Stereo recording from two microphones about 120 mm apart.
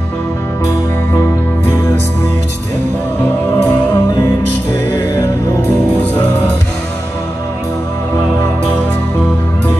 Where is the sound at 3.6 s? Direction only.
25° left (ahead or behind).